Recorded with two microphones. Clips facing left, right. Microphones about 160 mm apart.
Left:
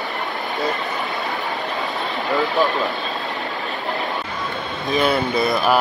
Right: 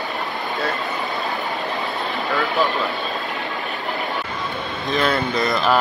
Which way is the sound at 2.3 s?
20° left (ahead or behind).